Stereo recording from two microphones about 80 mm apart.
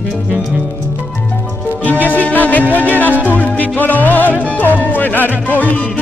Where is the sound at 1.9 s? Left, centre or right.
Left.